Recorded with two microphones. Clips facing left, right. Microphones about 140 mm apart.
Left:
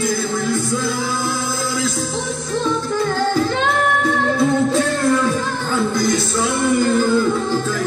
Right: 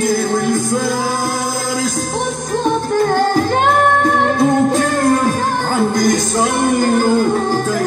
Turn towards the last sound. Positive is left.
turn(degrees=-50)  # may be behind; listen again after turning